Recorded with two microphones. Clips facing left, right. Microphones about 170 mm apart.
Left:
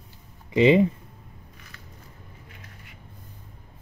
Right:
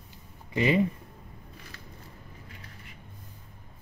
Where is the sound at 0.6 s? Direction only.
20° left (ahead or behind).